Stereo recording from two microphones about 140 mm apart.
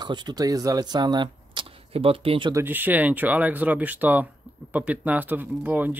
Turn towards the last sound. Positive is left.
turn(degrees=-10)  # may be behind; listen again after turning